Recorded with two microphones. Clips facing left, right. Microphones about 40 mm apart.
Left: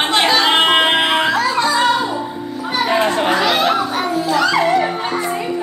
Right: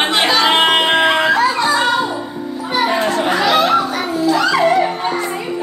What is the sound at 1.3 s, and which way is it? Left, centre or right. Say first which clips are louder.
Music: right 2 dB; centre.